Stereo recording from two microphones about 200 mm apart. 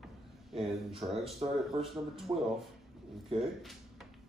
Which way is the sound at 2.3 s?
20° right (ahead or behind).